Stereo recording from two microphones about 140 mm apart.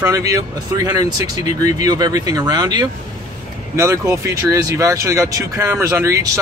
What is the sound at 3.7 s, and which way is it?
Speech, 20° right (ahead or behind).